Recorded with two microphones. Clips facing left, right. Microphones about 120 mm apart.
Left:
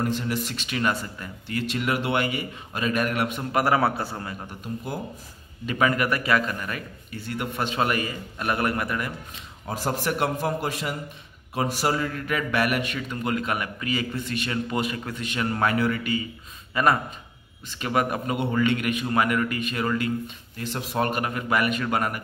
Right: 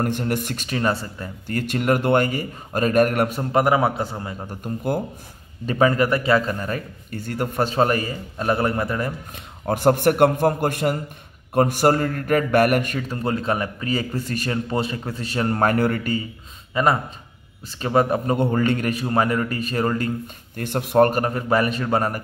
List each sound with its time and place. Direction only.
0.0 s a man's voice: 55° right (ahead or behind); by 1.3 s 30° right (ahead or behind)
1.5 s a man's voice: 45° right (ahead or behind)
3.5 s a man's voice: 20° right (ahead or behind)
4.5 s a man's voice: 55° right (ahead or behind)
5.7 s a man's voice: 30° right (ahead or behind)
7.1 s a man's voice: 45° right (ahead or behind); by 9.1 s 30° right (ahead or behind)
9.3 s a man's voice: 55° right (ahead or behind)
16.7 s a man's voice: 25° right (ahead or behind)
20.5 s a man's voice: 55° right (ahead or behind); by 22.2 s 35° right (ahead or behind)